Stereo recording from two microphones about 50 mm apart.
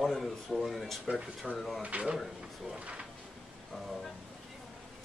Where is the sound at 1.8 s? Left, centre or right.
Right.